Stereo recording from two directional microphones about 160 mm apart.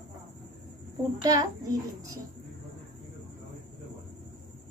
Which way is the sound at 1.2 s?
20° right (ahead or behind).